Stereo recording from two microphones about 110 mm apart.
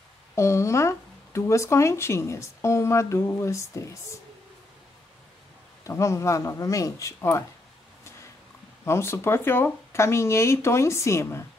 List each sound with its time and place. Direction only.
0.4 s speech: 25° left (ahead or behind)
5.9 s speech: 25° left (ahead or behind)
8.8 s speech: 25° left (ahead or behind)